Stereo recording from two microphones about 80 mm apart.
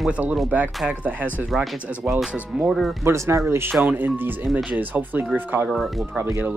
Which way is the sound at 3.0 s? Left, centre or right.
Right.